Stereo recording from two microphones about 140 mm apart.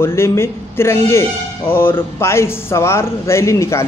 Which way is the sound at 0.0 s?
20° left (ahead or behind).